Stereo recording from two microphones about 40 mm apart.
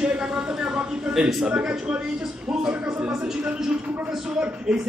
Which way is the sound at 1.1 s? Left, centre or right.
Right.